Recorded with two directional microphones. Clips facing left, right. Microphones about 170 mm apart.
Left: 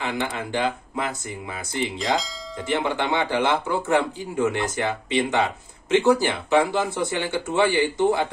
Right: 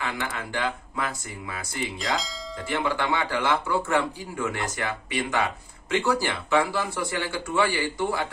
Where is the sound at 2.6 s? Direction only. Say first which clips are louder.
Left 3 dB; 20° left (ahead or behind).